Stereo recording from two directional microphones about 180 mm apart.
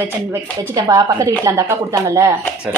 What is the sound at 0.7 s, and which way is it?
Speech, 20° right (ahead or behind).